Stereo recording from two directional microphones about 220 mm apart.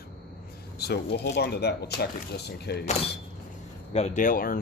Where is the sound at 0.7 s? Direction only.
45° left (ahead or behind).